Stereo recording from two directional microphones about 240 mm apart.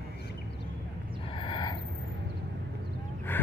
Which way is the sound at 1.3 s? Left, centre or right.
Centre.